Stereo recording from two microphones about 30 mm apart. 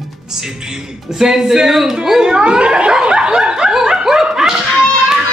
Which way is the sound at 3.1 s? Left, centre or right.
Right.